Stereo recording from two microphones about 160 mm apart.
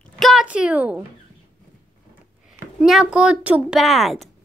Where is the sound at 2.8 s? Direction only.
5° right (ahead or behind).